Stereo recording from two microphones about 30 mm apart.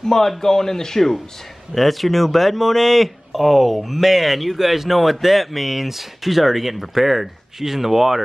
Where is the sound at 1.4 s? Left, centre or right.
Centre.